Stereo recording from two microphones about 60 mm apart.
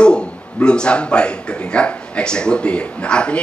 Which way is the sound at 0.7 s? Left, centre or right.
Centre.